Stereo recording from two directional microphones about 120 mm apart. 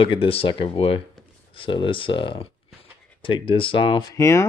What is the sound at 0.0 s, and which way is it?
Speech, 50° left (ahead or behind).